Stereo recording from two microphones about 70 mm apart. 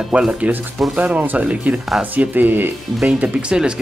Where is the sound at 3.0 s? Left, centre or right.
Centre.